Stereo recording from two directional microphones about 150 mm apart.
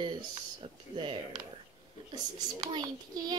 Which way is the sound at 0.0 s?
30° right (ahead or behind).